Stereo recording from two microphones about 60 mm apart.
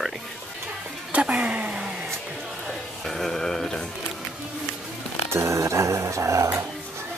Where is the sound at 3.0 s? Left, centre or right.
Centre.